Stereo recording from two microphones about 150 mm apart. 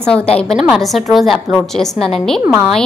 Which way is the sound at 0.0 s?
5° left (ahead or behind).